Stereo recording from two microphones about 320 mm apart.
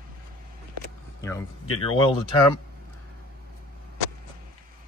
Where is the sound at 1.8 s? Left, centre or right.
Centre.